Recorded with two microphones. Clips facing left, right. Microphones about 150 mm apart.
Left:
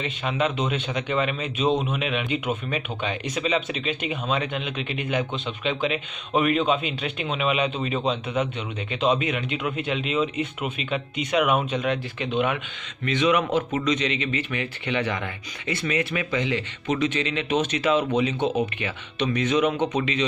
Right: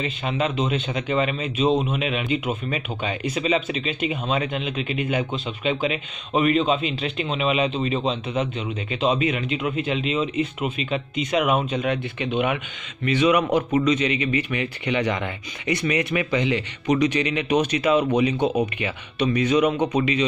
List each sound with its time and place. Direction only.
0.0 s speech: centre (ahead or behind)